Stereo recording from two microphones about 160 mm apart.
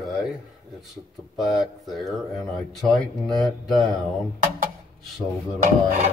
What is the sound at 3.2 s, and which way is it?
Speech, centre (ahead or behind).